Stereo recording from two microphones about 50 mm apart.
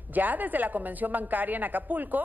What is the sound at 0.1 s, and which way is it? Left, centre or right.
A man's voice, right.